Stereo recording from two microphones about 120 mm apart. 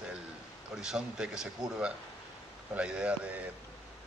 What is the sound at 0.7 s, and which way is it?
Speech, 5° right (ahead or behind).